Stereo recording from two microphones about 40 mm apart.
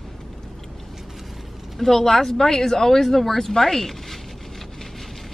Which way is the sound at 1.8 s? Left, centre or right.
Centre.